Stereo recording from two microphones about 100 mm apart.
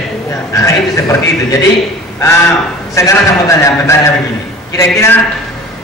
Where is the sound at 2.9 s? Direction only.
30° left (ahead or behind).